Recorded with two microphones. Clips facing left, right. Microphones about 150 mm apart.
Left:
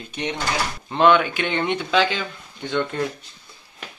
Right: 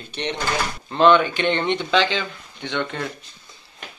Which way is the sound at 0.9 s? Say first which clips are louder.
Right 1 dB; 10° left (ahead or behind).